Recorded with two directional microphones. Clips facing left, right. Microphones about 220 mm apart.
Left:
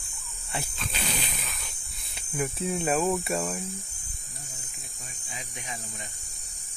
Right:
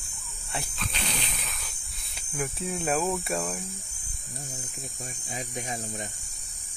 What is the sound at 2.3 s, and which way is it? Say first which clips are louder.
Speech: left 3 dB; centre (ahead or behind).